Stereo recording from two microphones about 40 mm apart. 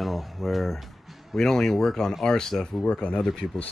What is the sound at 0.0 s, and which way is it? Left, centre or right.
Speech, centre.